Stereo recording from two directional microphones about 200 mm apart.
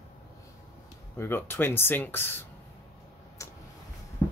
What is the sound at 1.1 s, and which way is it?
Speech, 10° left (ahead or behind).